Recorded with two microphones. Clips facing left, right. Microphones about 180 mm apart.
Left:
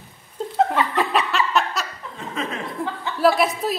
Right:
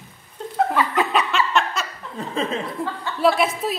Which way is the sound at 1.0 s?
Centre (ahead or behind).